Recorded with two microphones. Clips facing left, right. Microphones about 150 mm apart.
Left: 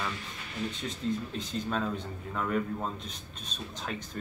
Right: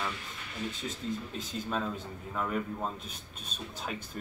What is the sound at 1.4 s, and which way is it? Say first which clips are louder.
Speech: left 2 dB; 5° right (ahead or behind).